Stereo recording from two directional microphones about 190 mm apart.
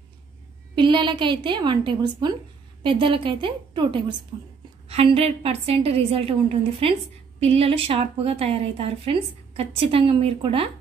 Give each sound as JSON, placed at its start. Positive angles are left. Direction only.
{"t": 0.7, "sound": "a woman's voice", "side_deg": -25}